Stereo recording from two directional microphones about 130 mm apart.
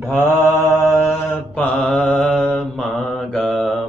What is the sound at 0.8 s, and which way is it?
Mantra, 5° left (ahead or behind).